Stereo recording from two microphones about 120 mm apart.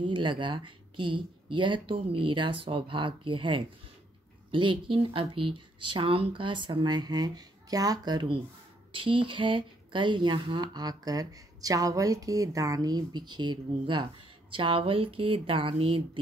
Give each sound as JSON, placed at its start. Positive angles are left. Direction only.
{"t": 0.0, "sound": "speech", "side_deg": -40}